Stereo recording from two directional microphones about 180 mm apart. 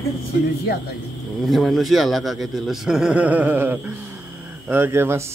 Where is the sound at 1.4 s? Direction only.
Centre (ahead or behind).